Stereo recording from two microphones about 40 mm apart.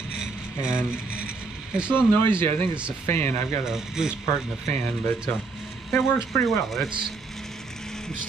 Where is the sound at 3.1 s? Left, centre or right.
Left.